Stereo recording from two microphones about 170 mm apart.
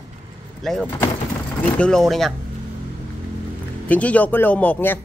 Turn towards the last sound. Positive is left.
turn(degrees=10)  # may be behind; listen again after turning